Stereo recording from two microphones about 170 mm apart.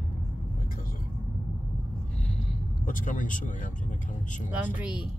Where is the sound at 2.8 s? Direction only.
50° left (ahead or behind).